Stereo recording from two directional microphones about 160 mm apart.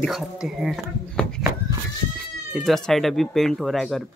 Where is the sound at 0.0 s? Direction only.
Centre (ahead or behind).